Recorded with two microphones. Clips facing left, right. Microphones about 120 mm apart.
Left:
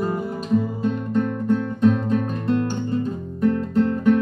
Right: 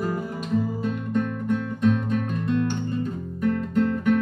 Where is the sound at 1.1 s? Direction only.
30° left (ahead or behind).